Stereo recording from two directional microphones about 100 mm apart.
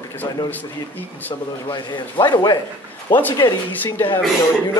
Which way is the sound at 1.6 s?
50° left (ahead or behind).